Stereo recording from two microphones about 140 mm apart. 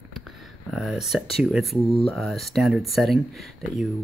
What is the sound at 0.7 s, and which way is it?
Speech, 5° right (ahead or behind).